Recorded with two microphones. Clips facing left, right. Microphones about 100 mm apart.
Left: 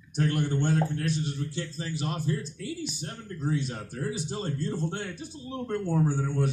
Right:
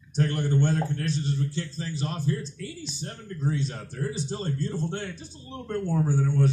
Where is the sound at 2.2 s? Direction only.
50° left (ahead or behind).